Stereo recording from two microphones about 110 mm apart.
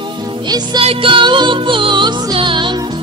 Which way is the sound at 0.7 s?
55° right (ahead or behind).